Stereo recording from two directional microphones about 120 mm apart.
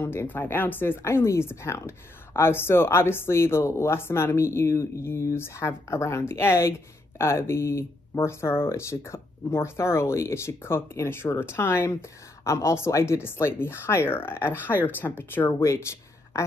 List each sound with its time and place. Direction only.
0.0 s speech: 20° left (ahead or behind)